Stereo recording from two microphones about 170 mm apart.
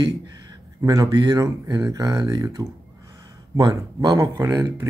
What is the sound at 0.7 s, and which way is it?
Speech, 20° right (ahead or behind).